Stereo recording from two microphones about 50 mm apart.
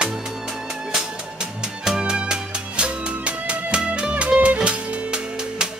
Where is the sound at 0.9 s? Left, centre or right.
Centre.